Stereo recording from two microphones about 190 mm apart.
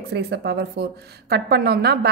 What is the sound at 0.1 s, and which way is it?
A woman's voice, 60° right (ahead or behind).